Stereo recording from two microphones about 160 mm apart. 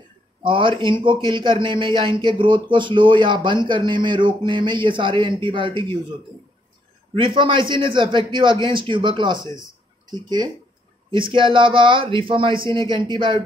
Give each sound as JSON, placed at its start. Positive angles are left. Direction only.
{"t": 0.4, "sound": "a man's voice", "side_deg": -30}
{"t": 7.2, "sound": "a man's voice", "side_deg": -30}